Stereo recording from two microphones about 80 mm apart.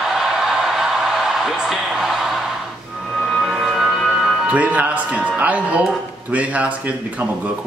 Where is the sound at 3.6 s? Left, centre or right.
Centre.